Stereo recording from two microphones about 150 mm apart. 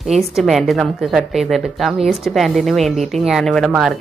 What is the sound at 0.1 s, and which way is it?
A woman's voice, centre (ahead or behind).